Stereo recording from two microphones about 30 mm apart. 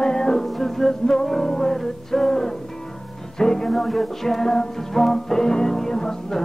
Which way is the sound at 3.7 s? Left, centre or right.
Centre.